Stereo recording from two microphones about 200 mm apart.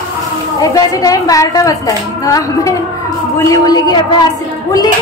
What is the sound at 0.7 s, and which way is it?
A woman's voice, 15° left (ahead or behind).